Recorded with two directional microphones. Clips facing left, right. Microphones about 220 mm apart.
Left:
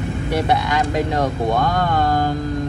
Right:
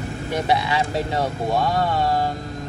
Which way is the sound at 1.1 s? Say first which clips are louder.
Left 1 dB; 5° right (ahead or behind).